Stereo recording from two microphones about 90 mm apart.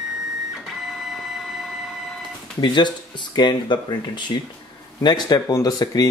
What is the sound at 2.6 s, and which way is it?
Speech, 60° left (ahead or behind).